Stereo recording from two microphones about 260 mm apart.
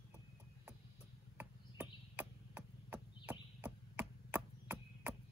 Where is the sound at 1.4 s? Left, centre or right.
Centre.